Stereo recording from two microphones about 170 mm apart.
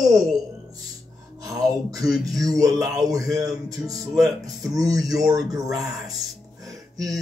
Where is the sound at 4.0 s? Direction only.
Centre (ahead or behind).